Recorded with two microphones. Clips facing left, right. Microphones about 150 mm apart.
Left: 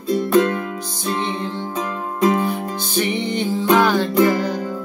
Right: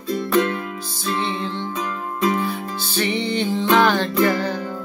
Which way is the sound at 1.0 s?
15° left (ahead or behind).